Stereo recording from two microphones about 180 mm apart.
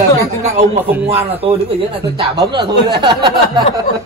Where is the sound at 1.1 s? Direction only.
35° right (ahead or behind).